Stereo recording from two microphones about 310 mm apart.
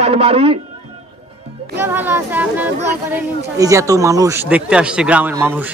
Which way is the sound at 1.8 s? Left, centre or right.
Centre.